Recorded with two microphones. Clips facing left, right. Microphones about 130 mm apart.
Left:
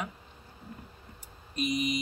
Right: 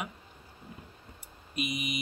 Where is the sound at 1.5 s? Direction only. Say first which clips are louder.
Left 5 dB; 5° right (ahead or behind).